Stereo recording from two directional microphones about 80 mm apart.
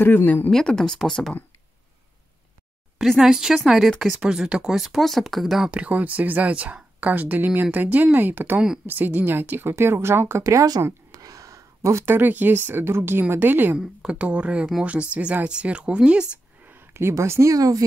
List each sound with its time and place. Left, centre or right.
0.0 s speech: left
0.5 s speech: centre
3.0 s speech: centre
5.7 s speech: centre
10.4 s speech: right
11.1 s a sound: right
12.1 s speech: right
13.7 s speech: centre
16.6 s speech: right